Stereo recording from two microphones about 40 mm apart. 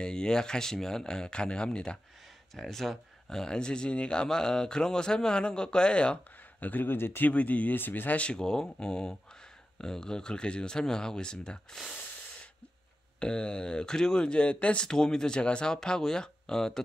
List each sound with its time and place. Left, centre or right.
0.0 s speech: centre
2.5 s speech: centre
3.5 s speech: left
6.6 s speech: left
6.9 s speech: left
7.2 s speech: left
7.7 s speech: left
8.4 s speech: centre
13.2 s speech: left
14.9 s speech: centre